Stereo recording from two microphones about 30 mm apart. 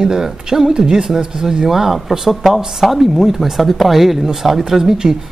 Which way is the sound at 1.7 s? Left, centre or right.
Centre.